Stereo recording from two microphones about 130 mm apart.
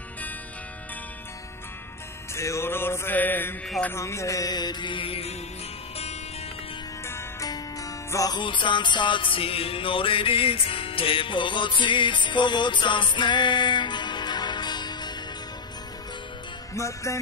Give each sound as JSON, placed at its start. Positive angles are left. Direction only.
{"t": 2.3, "sound": "music", "side_deg": 20}
{"t": 7.1, "sound": "music", "side_deg": 25}
{"t": 16.7, "sound": "music", "side_deg": 25}